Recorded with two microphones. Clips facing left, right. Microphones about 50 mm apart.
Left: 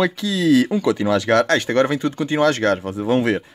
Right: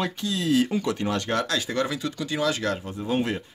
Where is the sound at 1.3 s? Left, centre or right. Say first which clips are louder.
Left 12 dB; left.